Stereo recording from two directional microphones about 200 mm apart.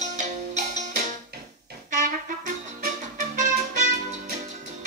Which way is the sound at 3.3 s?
40° right (ahead or behind).